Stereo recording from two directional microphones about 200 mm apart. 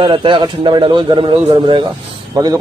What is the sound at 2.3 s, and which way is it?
Speech, 15° right (ahead or behind).